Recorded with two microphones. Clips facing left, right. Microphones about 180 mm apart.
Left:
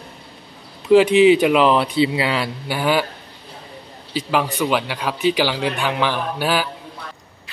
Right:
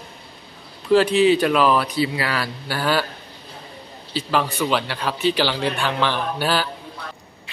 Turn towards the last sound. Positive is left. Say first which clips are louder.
# left 1 dB
turn(degrees=10)  # may be behind; listen again after turning